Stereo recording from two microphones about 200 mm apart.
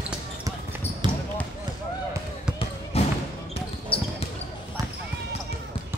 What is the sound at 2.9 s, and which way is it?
Basketball bounce, 30° left (ahead or behind).